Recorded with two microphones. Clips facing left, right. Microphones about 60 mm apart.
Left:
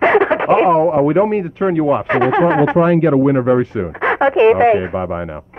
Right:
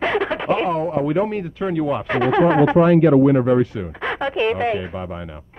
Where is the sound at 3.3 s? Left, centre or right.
Left.